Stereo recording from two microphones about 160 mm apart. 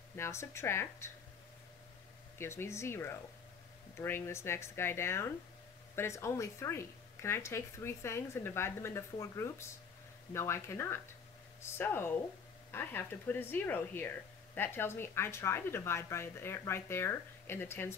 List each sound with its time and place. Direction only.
0.1 s speech: 15° left (ahead or behind)
2.3 s speech: 15° left (ahead or behind)